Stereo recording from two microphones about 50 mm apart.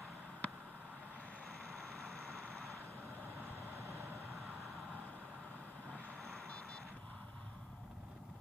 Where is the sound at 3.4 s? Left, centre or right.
Right.